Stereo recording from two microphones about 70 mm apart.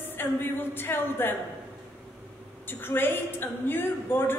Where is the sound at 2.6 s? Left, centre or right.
Left.